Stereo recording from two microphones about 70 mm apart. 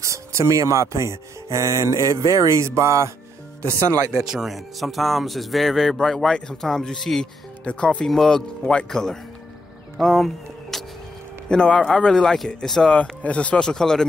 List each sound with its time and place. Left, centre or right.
0.0 s speech: right
4.1 s speech: centre
9.9 s music: centre
11.4 s speech: centre
12.9 s speech: centre